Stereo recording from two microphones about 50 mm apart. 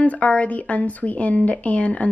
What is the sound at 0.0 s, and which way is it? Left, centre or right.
Speech, left.